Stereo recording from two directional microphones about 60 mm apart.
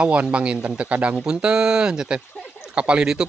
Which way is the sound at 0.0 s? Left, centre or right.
Right.